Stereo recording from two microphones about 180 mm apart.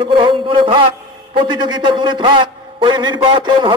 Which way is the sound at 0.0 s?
30° right (ahead or behind).